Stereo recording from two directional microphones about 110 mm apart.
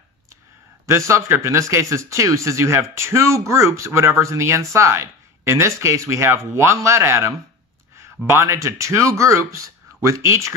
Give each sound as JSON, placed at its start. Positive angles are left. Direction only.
{"t": 0.8, "sound": "speech", "side_deg": -25}